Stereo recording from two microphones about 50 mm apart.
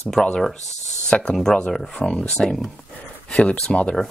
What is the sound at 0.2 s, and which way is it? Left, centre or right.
Speech, centre.